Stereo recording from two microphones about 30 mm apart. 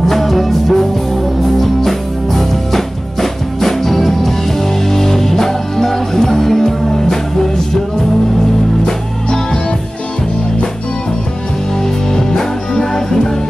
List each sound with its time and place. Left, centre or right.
0.1 s music: centre
8.8 s music: centre
12.1 s music: left